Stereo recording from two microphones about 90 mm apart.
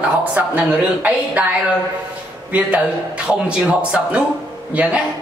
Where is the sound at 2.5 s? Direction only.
15° right (ahead or behind).